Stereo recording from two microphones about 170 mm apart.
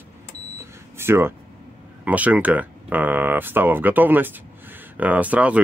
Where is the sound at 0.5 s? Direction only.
15° right (ahead or behind).